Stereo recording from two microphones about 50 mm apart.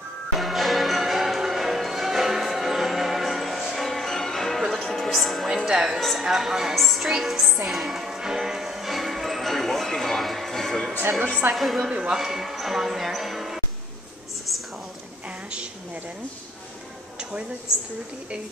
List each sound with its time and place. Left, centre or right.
0.4 s change ringing: centre
4.8 s music: centre
5.7 s a woman's voice: centre
5.9 s a man's voice: centre
6.2 s a woman's voice: centre
7.6 s music: centre
11.1 s speech: centre
11.5 s a man's voice: centre
11.9 s speech: centre
12.2 s a man's voice: centre
15.2 s a sound: right
17.2 s a sound: right